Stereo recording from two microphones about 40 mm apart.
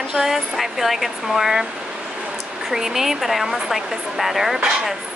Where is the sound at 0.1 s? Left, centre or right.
Centre.